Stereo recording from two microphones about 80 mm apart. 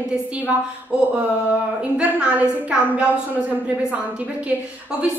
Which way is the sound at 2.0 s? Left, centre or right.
Centre.